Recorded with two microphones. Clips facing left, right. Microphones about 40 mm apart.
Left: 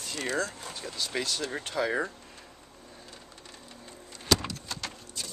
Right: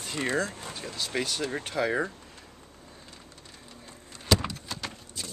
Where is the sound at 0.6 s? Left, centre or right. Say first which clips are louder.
Right 1 dB; centre.